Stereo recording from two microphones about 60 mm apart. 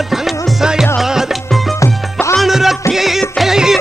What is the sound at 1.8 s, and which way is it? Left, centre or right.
Music, left.